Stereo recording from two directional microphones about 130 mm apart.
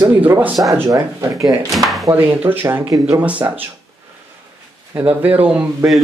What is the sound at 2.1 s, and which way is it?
Speech, 15° right (ahead or behind).